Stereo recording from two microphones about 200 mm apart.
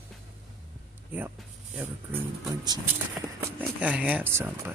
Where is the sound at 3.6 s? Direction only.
5° right (ahead or behind).